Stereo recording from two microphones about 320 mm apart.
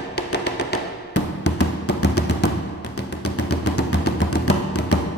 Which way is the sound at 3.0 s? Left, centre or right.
Left.